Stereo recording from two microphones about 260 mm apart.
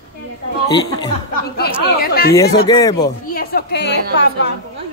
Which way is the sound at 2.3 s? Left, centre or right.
Centre.